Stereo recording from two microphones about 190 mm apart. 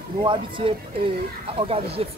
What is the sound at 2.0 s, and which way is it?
Speech, 30° right (ahead or behind).